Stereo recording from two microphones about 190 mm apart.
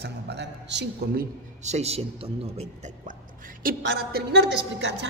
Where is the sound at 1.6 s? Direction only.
35° right (ahead or behind).